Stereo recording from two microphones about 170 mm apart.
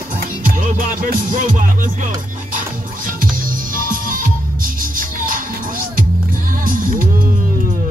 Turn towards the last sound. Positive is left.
turn(degrees=-50)  # may be behind; listen again after turning